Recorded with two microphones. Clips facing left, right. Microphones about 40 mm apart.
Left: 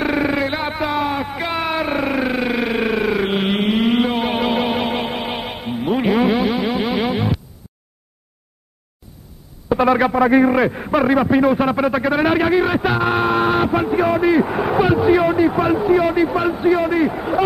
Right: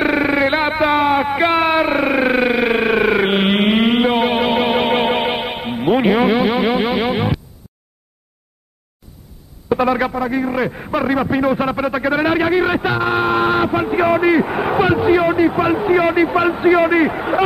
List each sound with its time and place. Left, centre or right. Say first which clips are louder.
0.0 s music: right 3 dB; centre
0.5 s a sound: right 6 dB; right
2.5 s synthesizer: right 4 dB; centre
3.3 s music: right 4 dB; right
4.8 s music: right 6 dB; right
5.3 s music: right 3 dB; right
6.9 s music: right 2 dB; centre
9.8 s a man's voice: left 3 dB; centre
15.8 s a man's voice: right 2 dB; right
16.5 s a man's voice: right 4 dB; right